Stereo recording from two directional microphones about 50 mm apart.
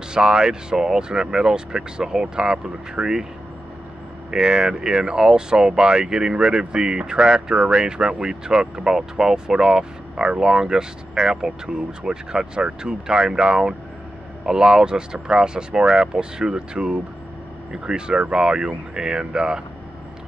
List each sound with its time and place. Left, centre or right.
0.1 s speech: centre
4.3 s speech: centre